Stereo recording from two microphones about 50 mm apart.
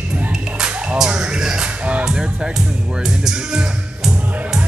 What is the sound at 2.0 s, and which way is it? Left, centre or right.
Music, centre.